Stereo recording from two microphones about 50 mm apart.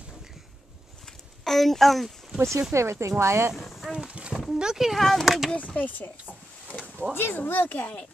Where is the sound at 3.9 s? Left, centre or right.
Right.